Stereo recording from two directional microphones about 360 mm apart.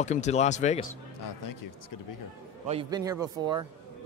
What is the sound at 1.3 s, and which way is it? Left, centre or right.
Speech, left.